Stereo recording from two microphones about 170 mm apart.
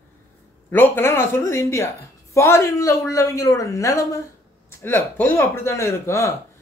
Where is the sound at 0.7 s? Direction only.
10° left (ahead or behind).